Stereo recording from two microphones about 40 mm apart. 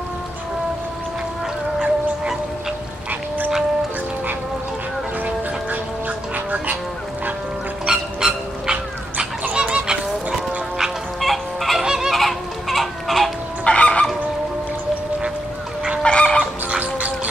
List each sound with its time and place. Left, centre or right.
3.1 s duck: right
5.2 s music: right
7.8 s dog: centre
9.5 s goose: right
11.1 s fowl: centre
11.8 s goose: centre
12.1 s goose: centre
13.7 s fowl: left
16.0 s chicken: left
16.8 s music: right